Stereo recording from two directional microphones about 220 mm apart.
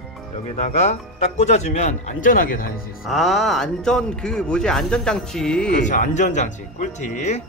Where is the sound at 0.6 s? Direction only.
30° left (ahead or behind).